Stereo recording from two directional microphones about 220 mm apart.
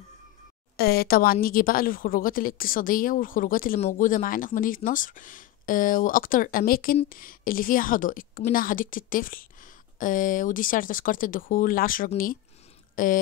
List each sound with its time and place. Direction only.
0.7 s a woman's voice: 45° left (ahead or behind)